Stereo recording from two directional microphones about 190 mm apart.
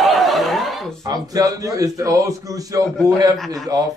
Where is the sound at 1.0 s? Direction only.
20° right (ahead or behind).